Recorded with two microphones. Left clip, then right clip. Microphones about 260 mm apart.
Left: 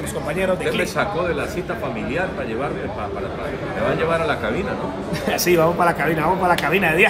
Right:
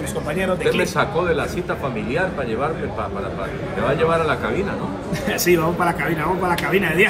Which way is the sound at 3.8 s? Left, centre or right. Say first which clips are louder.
Right 2 dB; centre.